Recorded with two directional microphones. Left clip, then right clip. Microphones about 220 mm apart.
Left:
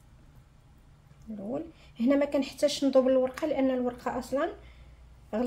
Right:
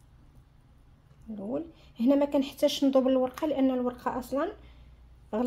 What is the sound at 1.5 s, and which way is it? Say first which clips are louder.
Speech: right 1 dB; 30° right (ahead or behind).